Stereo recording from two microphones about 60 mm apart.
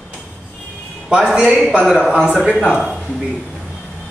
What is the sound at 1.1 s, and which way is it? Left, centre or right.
A man's voice, centre.